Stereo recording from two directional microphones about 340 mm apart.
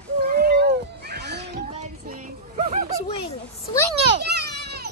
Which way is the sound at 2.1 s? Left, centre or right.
Centre.